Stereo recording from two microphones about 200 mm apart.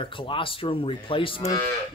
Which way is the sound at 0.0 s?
25° left (ahead or behind).